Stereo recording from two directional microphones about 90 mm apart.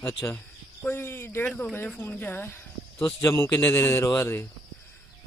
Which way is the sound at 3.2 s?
35° left (ahead or behind).